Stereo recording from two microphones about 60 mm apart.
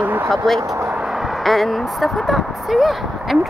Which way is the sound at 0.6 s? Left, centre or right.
Right.